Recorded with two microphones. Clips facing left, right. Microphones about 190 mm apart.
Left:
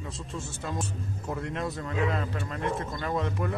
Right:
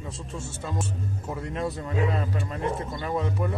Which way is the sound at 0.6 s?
Centre (ahead or behind).